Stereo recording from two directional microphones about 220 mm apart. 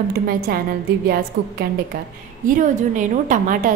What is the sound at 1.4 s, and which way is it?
A woman's voice, 45° right (ahead or behind).